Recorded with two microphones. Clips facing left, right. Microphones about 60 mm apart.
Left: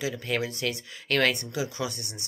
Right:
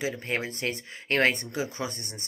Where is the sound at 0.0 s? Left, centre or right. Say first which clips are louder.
Left 1 dB; right.